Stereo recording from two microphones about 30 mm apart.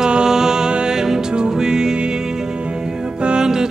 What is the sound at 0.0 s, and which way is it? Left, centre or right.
Music, right.